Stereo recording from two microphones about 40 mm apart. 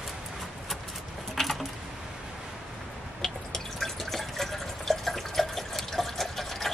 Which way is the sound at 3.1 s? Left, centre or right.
Centre.